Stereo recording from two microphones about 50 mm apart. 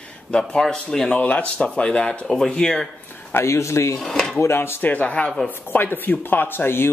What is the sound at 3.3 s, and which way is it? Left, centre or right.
Speech, left.